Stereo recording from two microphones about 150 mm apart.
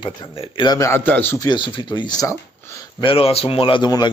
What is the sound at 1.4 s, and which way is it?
Speech, 30° left (ahead or behind).